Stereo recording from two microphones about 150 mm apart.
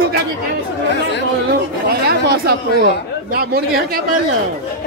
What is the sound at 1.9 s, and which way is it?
Speech, 90° right.